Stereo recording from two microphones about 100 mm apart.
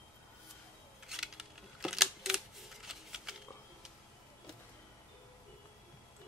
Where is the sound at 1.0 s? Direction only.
5° right (ahead or behind).